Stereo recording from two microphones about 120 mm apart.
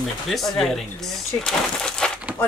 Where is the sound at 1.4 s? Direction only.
5° left (ahead or behind).